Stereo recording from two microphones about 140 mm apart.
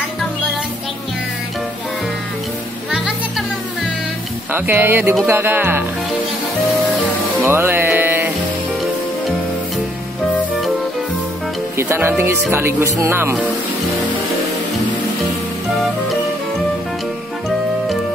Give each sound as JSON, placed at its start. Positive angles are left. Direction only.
{"t": 4.5, "sound": "speech", "side_deg": -15}
{"t": 7.4, "sound": "music", "side_deg": -15}
{"t": 11.7, "sound": "speech", "side_deg": -15}